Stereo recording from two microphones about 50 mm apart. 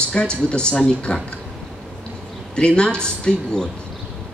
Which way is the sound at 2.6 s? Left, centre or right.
Centre.